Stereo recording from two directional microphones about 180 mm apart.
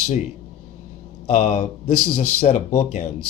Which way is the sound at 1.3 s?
40° left (ahead or behind).